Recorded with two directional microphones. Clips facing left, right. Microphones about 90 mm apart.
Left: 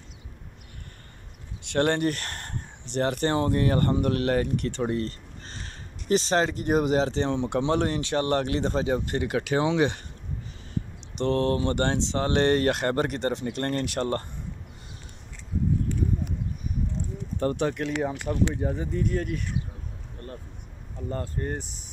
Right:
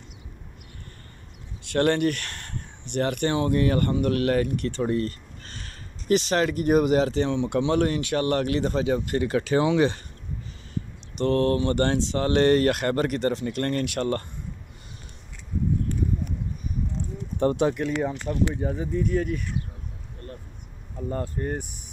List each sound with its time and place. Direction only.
1.7 s speech: 25° left (ahead or behind)
11.1 s speech: 20° left (ahead or behind)
17.4 s speech: 20° right (ahead or behind)
17.9 s speech: 15° left (ahead or behind)
18.5 s speech: centre (ahead or behind)
21.1 s speech: 15° right (ahead or behind)